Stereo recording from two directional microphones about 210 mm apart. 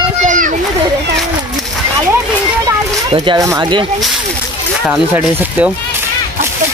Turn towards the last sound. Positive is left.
turn(degrees=-10)  # may be behind; listen again after turning